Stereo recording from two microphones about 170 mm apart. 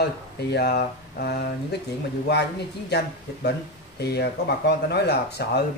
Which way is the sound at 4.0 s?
70° left (ahead or behind).